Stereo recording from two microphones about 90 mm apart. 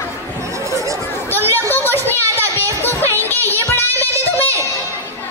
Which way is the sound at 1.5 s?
20° left (ahead or behind).